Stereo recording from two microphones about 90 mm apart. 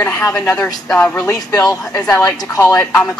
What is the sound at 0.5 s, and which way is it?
Speech, 45° left (ahead or behind).